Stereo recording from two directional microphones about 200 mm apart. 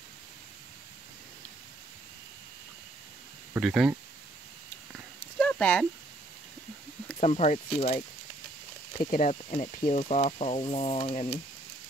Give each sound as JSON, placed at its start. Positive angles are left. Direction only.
{"t": 3.5, "sound": "speech", "side_deg": -5}
{"t": 5.2, "sound": "a sound", "side_deg": 5}
{"t": 7.2, "sound": "speech", "side_deg": 35}
{"t": 9.1, "sound": "speech", "side_deg": 40}